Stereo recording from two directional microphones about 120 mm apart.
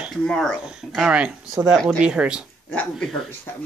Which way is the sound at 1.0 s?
10° right (ahead or behind).